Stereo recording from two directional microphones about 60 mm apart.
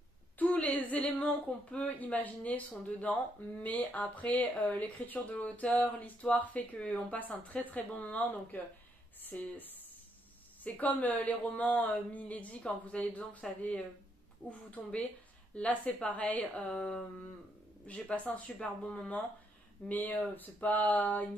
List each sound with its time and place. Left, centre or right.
0.4 s a woman's voice: left
10.6 s speech: left